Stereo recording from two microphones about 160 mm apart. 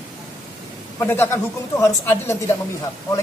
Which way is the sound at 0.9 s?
15° left (ahead or behind).